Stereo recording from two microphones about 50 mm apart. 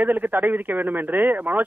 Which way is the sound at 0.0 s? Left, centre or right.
Right.